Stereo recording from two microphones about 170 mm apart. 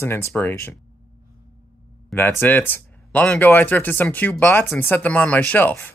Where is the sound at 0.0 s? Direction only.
15° left (ahead or behind).